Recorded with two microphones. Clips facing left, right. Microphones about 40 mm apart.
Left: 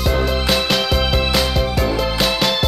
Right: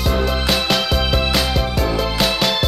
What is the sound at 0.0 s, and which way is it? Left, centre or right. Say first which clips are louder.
Music: left 1 dB; centre.